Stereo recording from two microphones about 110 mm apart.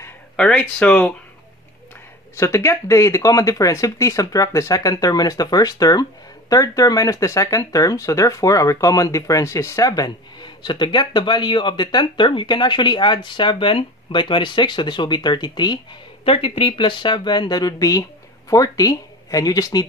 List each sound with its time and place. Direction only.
0.4 s speech: 10° left (ahead or behind)
2.3 s speech: 25° left (ahead or behind)
16.3 s speech: 55° left (ahead or behind); by 19.9 s 35° left (ahead or behind)